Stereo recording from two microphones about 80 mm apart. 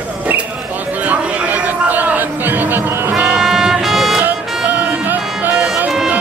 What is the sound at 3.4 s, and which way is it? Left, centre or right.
Music, centre.